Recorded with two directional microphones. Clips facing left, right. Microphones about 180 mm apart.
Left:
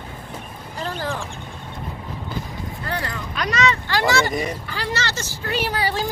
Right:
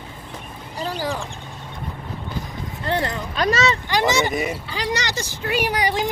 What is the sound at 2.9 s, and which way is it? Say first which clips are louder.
Speech: right 6 dB; 25° right (ahead or behind).